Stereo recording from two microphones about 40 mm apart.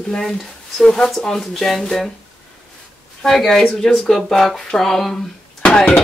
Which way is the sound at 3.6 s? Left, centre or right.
Centre.